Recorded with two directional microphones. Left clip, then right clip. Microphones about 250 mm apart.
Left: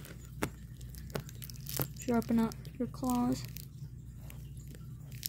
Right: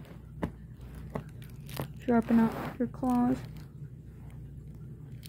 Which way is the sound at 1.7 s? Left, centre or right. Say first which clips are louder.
Right 5 dB; left.